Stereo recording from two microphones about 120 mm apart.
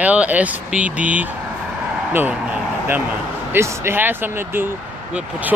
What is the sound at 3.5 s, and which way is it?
Speech, 20° right (ahead or behind).